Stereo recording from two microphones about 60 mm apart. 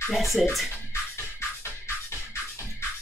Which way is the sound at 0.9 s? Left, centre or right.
Left.